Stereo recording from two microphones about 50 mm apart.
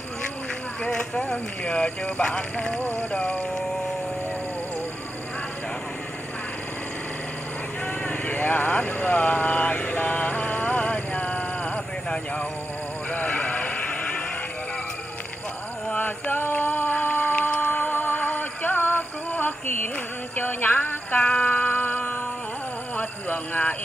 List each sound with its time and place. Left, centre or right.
0.8 s speech: centre
2.8 s speech: left; by 3.8 s centre
7.8 s vehicle: left
9.9 s a sound: left
13.1 s vehicle: left
15.9 s music: left
21.2 s music: left
22.9 s a sound: left